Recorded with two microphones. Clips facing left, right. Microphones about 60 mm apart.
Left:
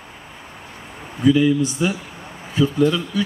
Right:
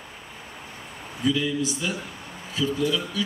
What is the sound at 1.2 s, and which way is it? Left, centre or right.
A man's voice, left.